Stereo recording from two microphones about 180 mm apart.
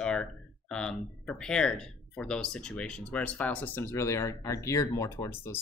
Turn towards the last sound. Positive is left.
turn(degrees=15)  # may be behind; listen again after turning